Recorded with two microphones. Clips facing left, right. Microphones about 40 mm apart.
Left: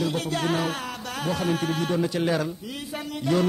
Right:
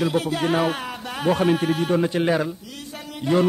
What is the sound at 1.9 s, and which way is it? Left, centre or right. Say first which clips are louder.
Speech: right 4 dB; right.